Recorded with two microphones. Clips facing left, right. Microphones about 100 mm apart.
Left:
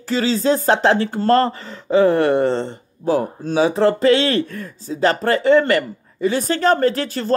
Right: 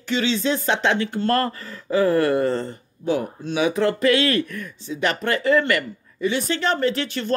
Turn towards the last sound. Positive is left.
turn(degrees=40)  # may be behind; listen again after turning